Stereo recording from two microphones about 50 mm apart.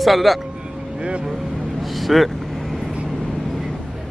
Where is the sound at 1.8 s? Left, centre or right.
Centre.